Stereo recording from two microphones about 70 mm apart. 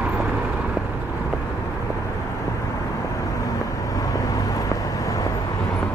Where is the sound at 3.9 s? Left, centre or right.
Left.